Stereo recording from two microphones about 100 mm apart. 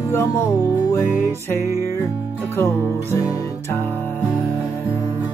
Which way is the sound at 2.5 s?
25° left (ahead or behind).